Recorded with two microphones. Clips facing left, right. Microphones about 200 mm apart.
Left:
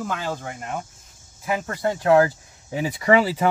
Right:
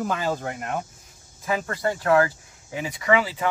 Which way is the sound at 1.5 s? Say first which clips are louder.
Left 1 dB; 15° left (ahead or behind).